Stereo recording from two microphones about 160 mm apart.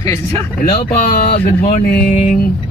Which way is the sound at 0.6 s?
65° left (ahead or behind).